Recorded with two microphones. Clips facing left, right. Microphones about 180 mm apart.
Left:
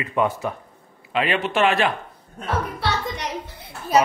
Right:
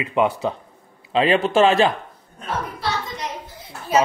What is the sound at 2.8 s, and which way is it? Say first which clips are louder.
Music: left 1 dB; 65° left (ahead or behind).